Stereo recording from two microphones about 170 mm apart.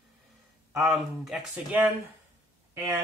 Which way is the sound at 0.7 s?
Centre (ahead or behind).